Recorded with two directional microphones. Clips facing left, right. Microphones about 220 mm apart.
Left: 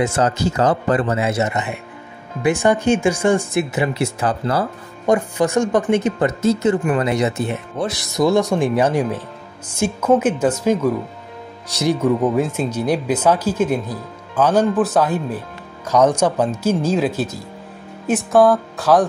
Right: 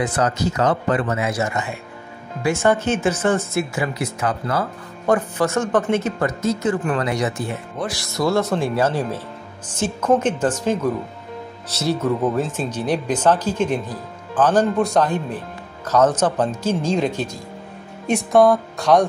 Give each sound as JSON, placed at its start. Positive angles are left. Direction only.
{"t": 0.0, "sound": "speech", "side_deg": 25}
{"t": 5.0, "sound": "speech", "side_deg": 15}